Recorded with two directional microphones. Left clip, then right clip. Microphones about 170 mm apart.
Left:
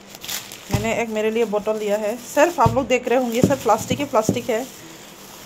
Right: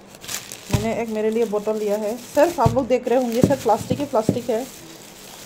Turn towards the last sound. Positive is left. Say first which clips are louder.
# left 1 dB
turn(degrees=-15)  # may be behind; listen again after turning